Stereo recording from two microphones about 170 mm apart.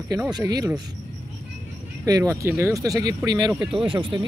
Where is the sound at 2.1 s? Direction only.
20° right (ahead or behind).